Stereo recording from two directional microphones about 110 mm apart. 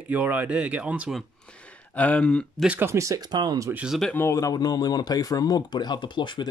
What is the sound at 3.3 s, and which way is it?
Speech, 40° right (ahead or behind).